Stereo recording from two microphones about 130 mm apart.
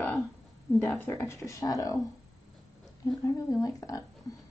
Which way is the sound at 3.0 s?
25° left (ahead or behind).